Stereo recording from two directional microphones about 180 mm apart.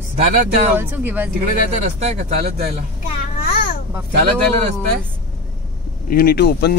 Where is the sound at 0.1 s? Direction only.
45° right (ahead or behind).